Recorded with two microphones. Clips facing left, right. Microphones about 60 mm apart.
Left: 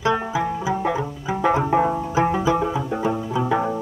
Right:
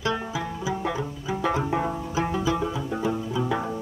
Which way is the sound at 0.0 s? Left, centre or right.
Left.